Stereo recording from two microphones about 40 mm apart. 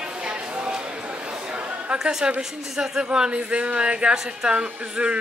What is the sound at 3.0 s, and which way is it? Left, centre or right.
Speech, right.